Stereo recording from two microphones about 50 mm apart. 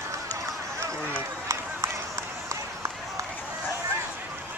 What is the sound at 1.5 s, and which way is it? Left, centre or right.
Run, right.